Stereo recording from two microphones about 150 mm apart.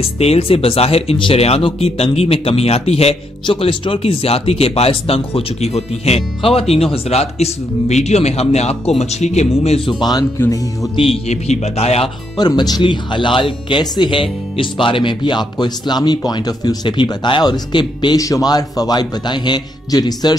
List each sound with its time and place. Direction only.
0.0 s speech: 40° left (ahead or behind)
9.9 s speech: 25° left (ahead or behind)
11.0 s speech: 45° left (ahead or behind)
12.4 s speech: 25° left (ahead or behind)